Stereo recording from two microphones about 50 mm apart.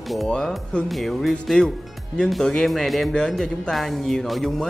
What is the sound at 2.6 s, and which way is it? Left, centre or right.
Speech, centre.